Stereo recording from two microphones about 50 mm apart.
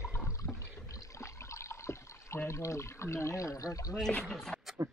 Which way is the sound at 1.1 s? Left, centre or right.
Left.